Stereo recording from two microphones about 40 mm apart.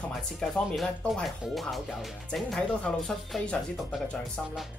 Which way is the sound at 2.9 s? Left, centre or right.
Left.